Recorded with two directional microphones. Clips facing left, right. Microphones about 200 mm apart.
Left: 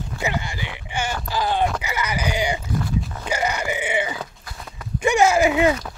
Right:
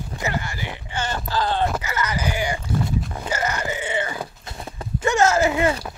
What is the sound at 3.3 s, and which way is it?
Wail, 15° left (ahead or behind).